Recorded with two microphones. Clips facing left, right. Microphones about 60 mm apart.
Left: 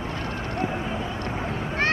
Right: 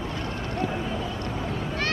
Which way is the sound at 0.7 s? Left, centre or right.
Left.